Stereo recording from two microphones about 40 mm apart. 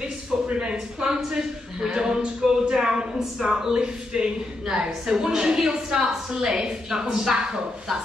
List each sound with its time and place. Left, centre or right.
0.0 s a man's voice: right